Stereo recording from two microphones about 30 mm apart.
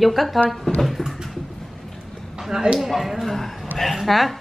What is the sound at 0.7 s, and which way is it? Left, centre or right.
Speech, left.